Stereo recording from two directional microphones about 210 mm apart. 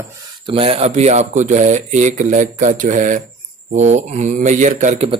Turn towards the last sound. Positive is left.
turn(degrees=-30)  # may be behind; listen again after turning